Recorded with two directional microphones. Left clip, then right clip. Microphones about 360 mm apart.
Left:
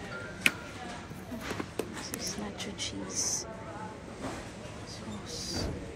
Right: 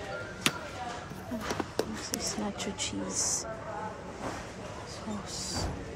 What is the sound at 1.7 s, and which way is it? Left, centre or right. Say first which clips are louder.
Speech: right 4 dB; right.